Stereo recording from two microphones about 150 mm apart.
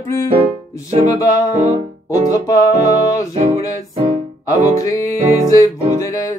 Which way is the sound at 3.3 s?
50° right (ahead or behind).